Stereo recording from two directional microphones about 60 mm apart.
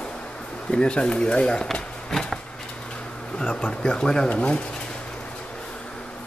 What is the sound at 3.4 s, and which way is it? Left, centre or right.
Speech, centre.